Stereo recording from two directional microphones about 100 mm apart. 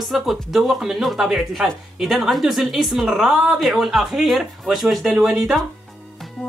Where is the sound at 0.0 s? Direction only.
Centre (ahead or behind).